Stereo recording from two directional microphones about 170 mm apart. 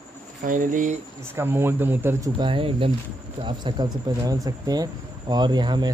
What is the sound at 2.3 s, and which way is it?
Speech, 30° right (ahead or behind).